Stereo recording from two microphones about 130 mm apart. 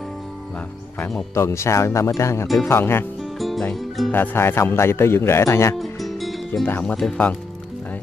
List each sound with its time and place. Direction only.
1.3 s speech: 20° left (ahead or behind)
3.2 s music: centre (ahead or behind)
3.7 s speech: centre (ahead or behind)
4.1 s speech: 15° left (ahead or behind)
5.8 s music: centre (ahead or behind)
6.6 s speech: 10° left (ahead or behind)